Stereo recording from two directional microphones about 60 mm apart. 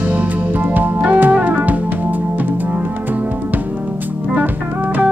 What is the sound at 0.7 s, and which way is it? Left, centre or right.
Organ, right.